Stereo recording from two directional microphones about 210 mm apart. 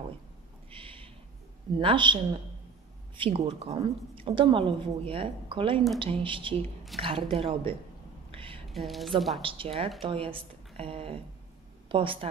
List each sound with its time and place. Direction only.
0.7 s a sound: 25° right (ahead or behind)
1.8 s speech: 25° right (ahead or behind)
3.2 s speech: 25° right (ahead or behind)
8.4 s a sound: 25° right (ahead or behind)
8.7 s speech: centre (ahead or behind)
9.4 s speech: 25° right (ahead or behind)